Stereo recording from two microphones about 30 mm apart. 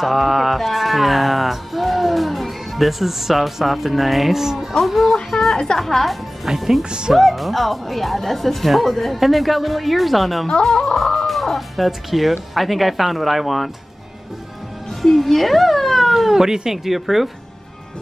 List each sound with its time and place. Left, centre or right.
0.0 s music: centre
4.4 s speech: centre
4.7 s speech: centre
5.3 s a sound: centre
5.8 s speech: centre
6.4 s speech: centre
6.8 s speech: right
7.2 s speech: centre
15.0 s a sound: centre
16.1 s cat: centre
16.3 s speech: centre
16.7 s speech: centre